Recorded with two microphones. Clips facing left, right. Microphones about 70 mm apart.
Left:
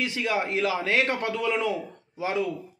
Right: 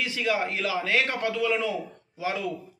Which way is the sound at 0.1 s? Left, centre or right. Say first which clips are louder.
Even; left.